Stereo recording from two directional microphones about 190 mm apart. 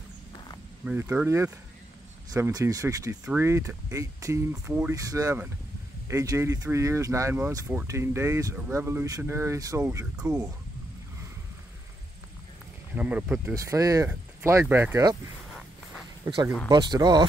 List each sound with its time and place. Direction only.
0.8 s speech: 10° right (ahead or behind)
12.9 s speech: 5° right (ahead or behind)
16.6 s speech: 20° right (ahead or behind)